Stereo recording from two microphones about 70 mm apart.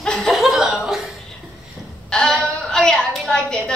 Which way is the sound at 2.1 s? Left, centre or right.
Centre.